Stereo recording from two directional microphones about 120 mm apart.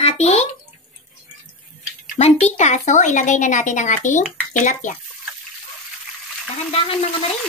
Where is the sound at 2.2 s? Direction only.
60° left (ahead or behind); by 4.2 s 90° left.